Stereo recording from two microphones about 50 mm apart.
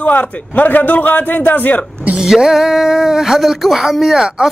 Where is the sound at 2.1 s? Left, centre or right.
Centre.